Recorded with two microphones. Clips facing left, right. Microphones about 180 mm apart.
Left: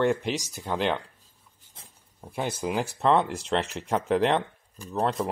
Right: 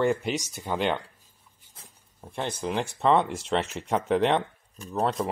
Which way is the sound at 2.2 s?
10° left (ahead or behind).